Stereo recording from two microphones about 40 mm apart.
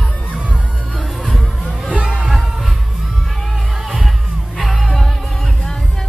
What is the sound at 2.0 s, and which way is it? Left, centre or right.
Music, right.